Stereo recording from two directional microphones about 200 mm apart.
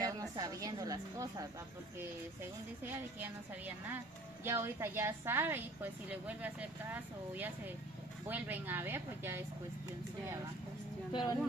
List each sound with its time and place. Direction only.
0.0 s a woman's voice: 20° right (ahead or behind)
2.8 s a woman's voice: 10° right (ahead or behind)
11.1 s speech: 20° left (ahead or behind)